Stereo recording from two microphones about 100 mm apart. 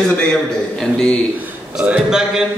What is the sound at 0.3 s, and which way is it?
Speech, 5° left (ahead or behind).